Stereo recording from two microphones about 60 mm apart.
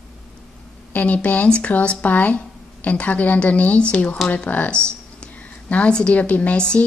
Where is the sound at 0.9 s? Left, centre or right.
Left.